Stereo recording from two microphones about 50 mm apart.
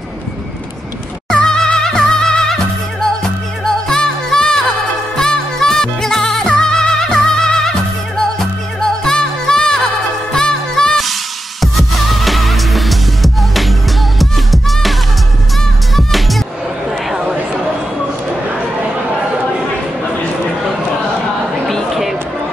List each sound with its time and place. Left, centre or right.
1.3 s music: centre
11.6 s music: centre
17.1 s a sound: centre